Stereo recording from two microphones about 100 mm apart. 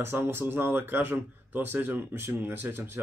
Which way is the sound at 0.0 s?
25° right (ahead or behind).